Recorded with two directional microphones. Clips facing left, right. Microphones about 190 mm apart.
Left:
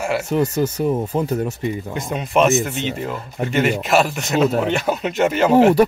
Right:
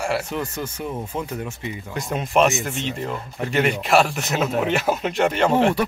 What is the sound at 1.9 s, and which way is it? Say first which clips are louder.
Speech: right 1 dB; centre (ahead or behind).